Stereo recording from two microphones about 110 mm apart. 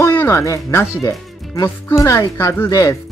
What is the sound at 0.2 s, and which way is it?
Speech, 30° left (ahead or behind).